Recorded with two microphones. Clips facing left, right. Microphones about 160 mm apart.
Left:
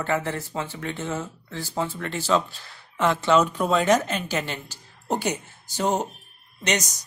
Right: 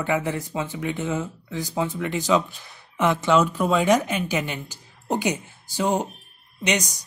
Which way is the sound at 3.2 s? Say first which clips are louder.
Even; 5° right (ahead or behind).